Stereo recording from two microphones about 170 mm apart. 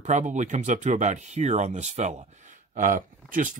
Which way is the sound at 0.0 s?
45° right (ahead or behind).